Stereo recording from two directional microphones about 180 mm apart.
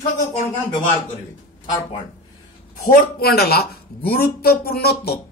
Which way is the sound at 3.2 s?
60° left (ahead or behind).